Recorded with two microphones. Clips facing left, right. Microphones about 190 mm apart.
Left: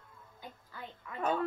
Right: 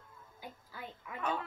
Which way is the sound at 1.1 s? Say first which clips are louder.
Left 4 dB; 40° left (ahead or behind).